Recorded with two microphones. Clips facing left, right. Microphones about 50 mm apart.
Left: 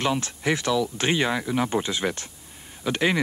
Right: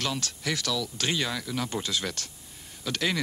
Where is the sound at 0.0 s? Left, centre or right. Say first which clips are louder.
Left 7 dB; left.